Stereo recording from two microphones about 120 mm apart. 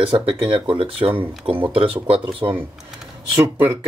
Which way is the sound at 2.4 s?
45° right (ahead or behind).